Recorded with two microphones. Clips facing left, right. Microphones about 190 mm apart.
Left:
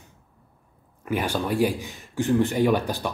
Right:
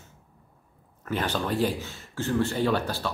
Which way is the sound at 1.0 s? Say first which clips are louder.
Left 3 dB; 10° left (ahead or behind).